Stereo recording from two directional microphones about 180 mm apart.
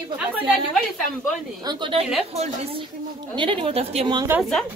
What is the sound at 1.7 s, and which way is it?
Speech, 30° right (ahead or behind).